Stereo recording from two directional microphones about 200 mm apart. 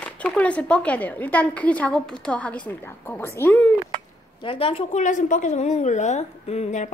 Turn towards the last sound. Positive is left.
turn(degrees=35)  # may be behind; listen again after turning